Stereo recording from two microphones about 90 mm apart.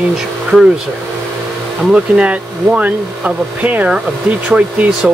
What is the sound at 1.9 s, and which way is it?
Speech, 15° right (ahead or behind).